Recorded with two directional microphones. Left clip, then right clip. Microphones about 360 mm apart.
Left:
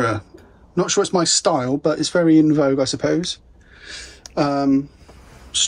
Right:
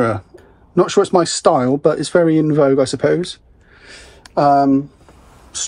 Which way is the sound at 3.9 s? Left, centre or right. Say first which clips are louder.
Left 4 dB; centre.